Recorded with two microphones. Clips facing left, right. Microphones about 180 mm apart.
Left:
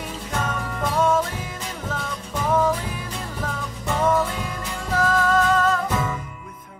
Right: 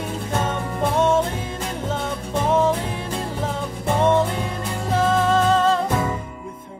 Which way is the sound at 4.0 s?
25° right (ahead or behind).